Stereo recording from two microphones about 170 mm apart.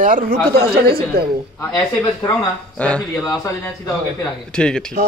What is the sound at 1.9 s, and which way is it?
Speech, 20° left (ahead or behind).